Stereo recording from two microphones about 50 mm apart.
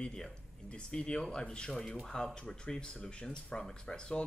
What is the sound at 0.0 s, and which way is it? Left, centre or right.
Speech, centre.